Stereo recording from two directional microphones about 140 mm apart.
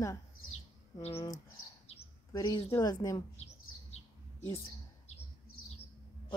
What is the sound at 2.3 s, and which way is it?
Speech, 25° left (ahead or behind).